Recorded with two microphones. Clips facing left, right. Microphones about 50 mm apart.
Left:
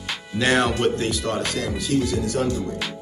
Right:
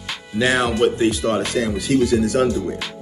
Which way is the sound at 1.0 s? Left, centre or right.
Right.